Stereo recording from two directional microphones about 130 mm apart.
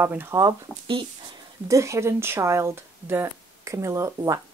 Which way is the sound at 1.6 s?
25° right (ahead or behind).